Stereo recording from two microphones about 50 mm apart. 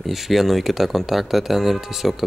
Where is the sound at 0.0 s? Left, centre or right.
Centre.